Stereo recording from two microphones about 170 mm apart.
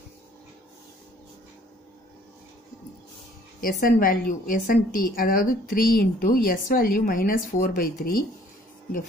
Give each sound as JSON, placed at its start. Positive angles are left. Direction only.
{"t": 3.6, "sound": "a woman's voice", "side_deg": 55}